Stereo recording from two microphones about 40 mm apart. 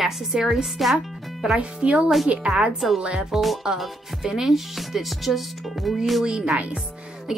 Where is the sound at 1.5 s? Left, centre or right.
Right.